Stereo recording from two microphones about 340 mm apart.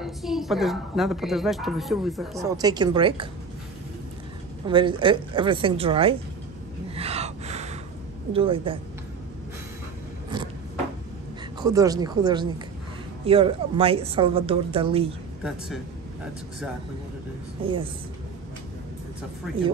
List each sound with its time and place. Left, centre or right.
0.0 s a woman's voice: centre
2.5 s speech: centre
4.6 s speech: centre
7.0 s gasp: centre
8.3 s speech: centre
11.6 s speech: centre